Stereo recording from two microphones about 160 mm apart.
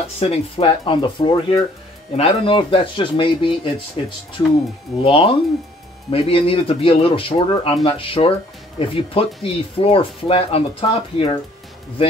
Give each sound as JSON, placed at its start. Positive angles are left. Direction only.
{"t": 0.0, "sound": "speech", "side_deg": 40}
{"t": 5.0, "sound": "speech", "side_deg": 35}